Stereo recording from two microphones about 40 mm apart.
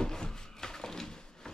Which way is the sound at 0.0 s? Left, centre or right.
Centre.